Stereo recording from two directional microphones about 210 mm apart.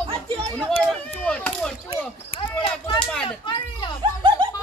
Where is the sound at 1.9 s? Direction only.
25° left (ahead or behind).